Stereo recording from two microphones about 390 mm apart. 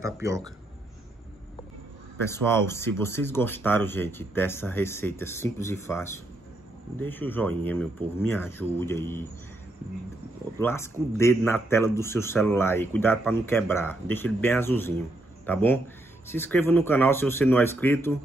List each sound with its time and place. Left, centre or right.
0.0 s speech: centre
2.1 s a man's voice: centre
10.6 s a man's voice: centre